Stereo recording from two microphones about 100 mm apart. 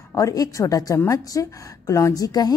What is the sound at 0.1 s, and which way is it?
A woman's voice, 35° left (ahead or behind).